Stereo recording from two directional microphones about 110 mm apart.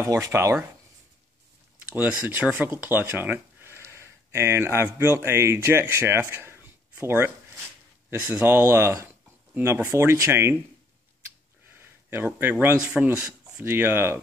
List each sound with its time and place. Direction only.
0.0 s speech: 30° right (ahead or behind)
1.9 s speech: 15° right (ahead or behind)
2.8 s a sound: 20° right (ahead or behind)
4.8 s speech: 20° right (ahead or behind)
11.8 s speech: 20° right (ahead or behind)
13.7 s speech: 20° right (ahead or behind)